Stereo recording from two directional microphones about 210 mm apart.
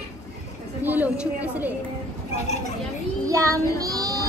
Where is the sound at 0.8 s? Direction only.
10° right (ahead or behind).